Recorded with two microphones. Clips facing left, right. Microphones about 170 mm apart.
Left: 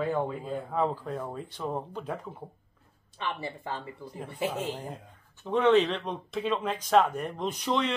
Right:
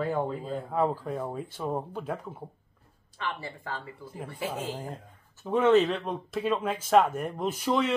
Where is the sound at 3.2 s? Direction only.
20° left (ahead or behind).